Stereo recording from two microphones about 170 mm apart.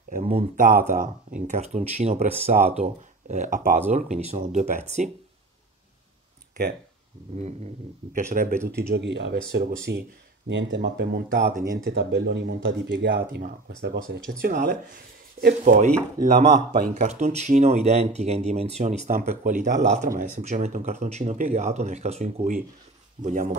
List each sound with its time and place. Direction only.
0.2 s speech: 35° right (ahead or behind)
0.6 s speech: 55° right (ahead or behind)
7.3 s speech: 40° right (ahead or behind)
8.6 s speech: 65° right (ahead or behind); by 9.4 s 85° right
9.5 s speech: 65° right (ahead or behind)
10.5 s speech: 90° right; by 23.5 s 50° right (ahead or behind)